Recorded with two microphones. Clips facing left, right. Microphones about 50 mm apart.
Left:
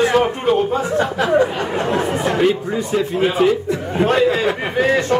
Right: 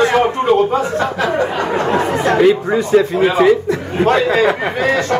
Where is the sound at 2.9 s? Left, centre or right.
Right.